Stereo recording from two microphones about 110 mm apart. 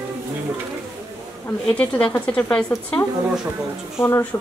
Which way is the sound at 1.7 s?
10° left (ahead or behind).